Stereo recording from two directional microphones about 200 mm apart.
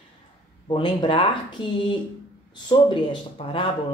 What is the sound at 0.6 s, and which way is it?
Speech, 25° left (ahead or behind).